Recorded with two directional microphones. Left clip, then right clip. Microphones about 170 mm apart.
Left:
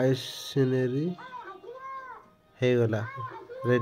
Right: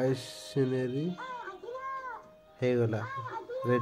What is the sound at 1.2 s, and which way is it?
Child singing, 65° right (ahead or behind).